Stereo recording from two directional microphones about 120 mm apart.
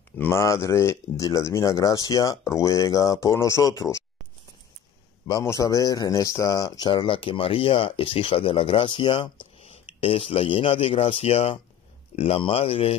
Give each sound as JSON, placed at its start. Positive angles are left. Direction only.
{"t": 0.2, "sound": "speech", "side_deg": 20}
{"t": 5.4, "sound": "speech", "side_deg": 25}
{"t": 6.9, "sound": "speech", "side_deg": 45}